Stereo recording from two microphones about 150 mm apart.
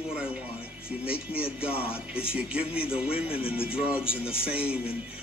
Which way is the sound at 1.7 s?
40° left (ahead or behind).